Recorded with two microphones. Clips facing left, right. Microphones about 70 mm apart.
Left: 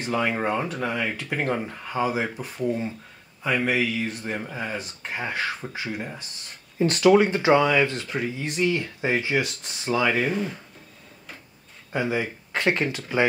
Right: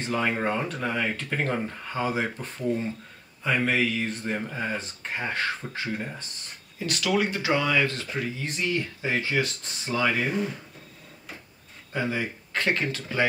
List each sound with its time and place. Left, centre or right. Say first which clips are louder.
0.0 s speech: left 2 dB; centre
6.8 s speech: left 8 dB; left; by 10.2 s centre
11.9 s speech: left 3 dB; centre